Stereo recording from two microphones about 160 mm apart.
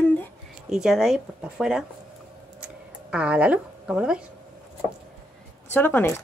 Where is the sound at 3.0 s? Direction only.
5° right (ahead or behind).